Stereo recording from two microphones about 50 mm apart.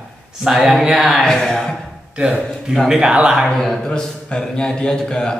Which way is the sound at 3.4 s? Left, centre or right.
Centre.